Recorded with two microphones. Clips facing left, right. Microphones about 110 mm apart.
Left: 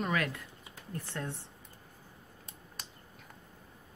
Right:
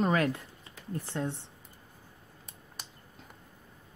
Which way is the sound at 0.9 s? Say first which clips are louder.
Right 5 dB; 25° right (ahead or behind).